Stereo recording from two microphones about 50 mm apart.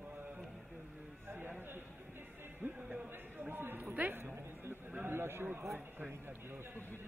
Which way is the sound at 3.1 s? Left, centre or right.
Right.